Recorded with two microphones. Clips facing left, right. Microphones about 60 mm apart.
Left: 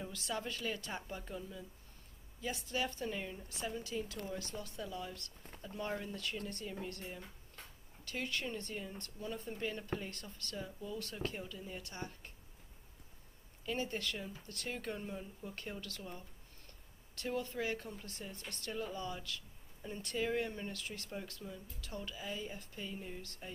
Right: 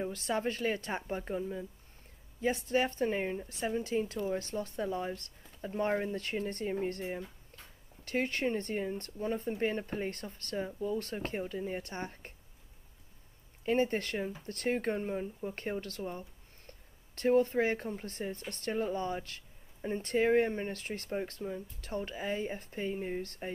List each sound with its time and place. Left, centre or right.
0.0 s speech: right
13.7 s speech: right